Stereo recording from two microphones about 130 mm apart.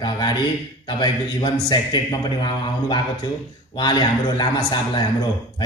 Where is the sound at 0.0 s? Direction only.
30° left (ahead or behind).